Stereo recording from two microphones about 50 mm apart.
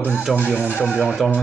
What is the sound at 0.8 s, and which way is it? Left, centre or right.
Speech, right.